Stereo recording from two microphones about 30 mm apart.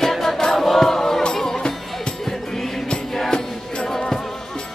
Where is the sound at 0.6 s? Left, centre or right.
Centre.